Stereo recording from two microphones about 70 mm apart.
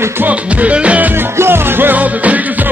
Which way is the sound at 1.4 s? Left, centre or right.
Right.